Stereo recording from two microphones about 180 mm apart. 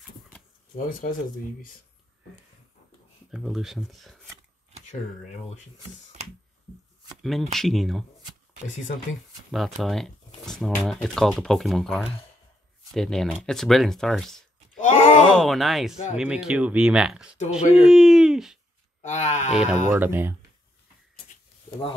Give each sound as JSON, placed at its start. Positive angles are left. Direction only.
{"t": 3.3, "sound": "speech", "side_deg": 0}
{"t": 7.5, "sound": "speech", "side_deg": 0}
{"t": 9.5, "sound": "speech", "side_deg": 0}
{"t": 14.8, "sound": "groan", "side_deg": 45}
{"t": 15.3, "sound": "speech", "side_deg": 0}
{"t": 18.9, "sound": "a sound", "side_deg": 40}
{"t": 19.5, "sound": "speech", "side_deg": -5}